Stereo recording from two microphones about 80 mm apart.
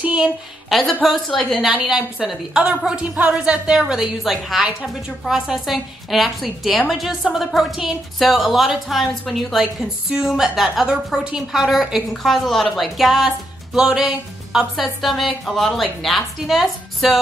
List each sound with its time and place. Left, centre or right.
0.0 s speech: centre
0.7 s a woman's voice: centre